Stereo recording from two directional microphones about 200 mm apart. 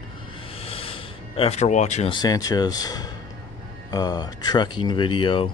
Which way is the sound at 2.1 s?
20° left (ahead or behind).